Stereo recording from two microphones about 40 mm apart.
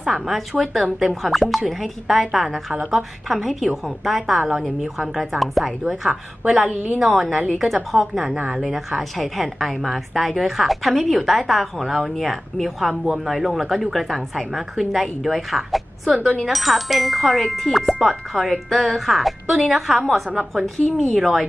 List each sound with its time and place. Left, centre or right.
0.0 s a woman's voice: centre
0.5 s a woman's voice: centre
7.0 s a woman's voice: centre